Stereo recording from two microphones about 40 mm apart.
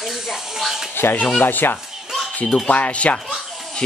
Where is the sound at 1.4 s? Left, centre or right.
Left.